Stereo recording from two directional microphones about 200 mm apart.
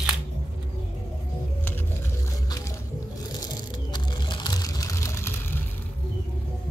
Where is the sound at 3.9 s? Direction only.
20° left (ahead or behind).